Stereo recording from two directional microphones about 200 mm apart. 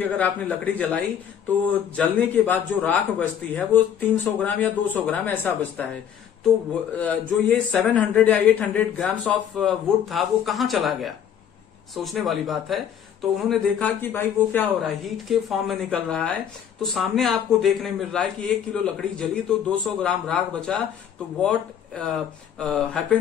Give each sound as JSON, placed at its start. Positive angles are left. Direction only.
{"t": 0.0, "sound": "speech", "side_deg": 10}
{"t": 7.0, "sound": "speech", "side_deg": 5}